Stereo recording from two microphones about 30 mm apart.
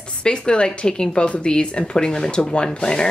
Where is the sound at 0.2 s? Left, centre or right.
Left.